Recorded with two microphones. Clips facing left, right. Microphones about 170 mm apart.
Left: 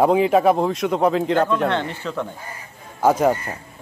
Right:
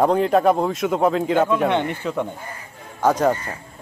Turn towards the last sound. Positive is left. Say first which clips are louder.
# left 1 dB
turn(degrees=10)  # may be behind; listen again after turning